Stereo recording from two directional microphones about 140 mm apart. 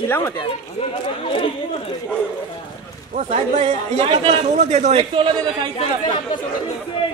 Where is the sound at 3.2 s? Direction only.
55° right (ahead or behind).